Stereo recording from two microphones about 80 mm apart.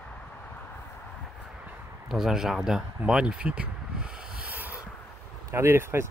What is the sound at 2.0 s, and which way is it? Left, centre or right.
Speech, centre.